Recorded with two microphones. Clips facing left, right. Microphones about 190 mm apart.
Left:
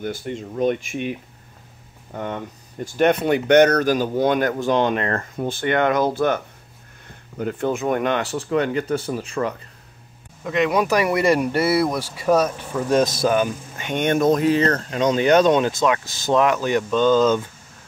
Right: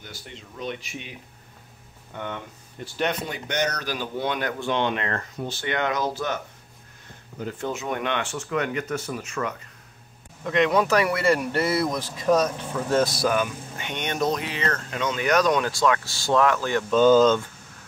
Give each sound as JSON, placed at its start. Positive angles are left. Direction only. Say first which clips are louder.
{"t": 0.0, "sound": "speech", "louder": "left 15 dB", "side_deg": 50}
{"t": 2.1, "sound": "speech", "louder": "left 5 dB", "side_deg": 40}
{"t": 10.4, "sound": "speech", "louder": "left 1 dB", "side_deg": 5}
{"t": 13.0, "sound": "speech", "louder": "left 4 dB", "side_deg": 25}
{"t": 13.8, "sound": "speech", "louder": "left 8 dB", "side_deg": 50}
{"t": 16.9, "sound": "speech", "louder": "right 1 dB", "side_deg": -5}